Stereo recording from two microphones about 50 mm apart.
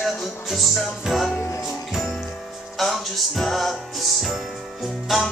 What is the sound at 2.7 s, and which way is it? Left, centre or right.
Music, centre.